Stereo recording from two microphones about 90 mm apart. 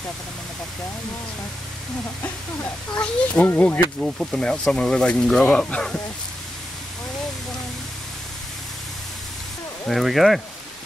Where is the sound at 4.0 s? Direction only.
5° left (ahead or behind).